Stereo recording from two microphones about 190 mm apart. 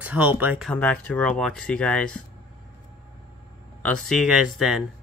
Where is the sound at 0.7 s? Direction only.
5° left (ahead or behind).